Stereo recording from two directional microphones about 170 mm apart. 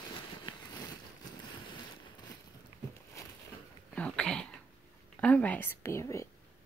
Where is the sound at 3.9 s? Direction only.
5° left (ahead or behind).